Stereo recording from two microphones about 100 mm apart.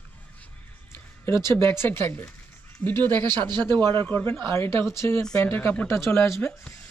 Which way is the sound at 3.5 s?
45° right (ahead or behind).